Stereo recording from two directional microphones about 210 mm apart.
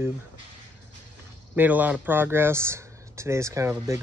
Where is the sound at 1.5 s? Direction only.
10° right (ahead or behind).